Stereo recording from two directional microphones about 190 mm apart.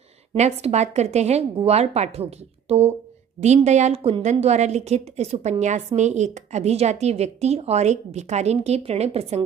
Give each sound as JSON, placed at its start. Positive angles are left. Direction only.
{"t": 0.3, "sound": "speech", "side_deg": -35}